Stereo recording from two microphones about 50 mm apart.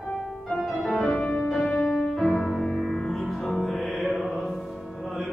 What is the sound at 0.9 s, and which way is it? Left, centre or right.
Music, centre.